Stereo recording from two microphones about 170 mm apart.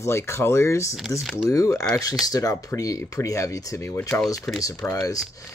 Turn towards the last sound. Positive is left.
turn(degrees=20)  # may be behind; listen again after turning